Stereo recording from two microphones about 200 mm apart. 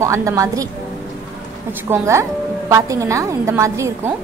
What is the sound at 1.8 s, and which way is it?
A woman's voice, 15° right (ahead or behind).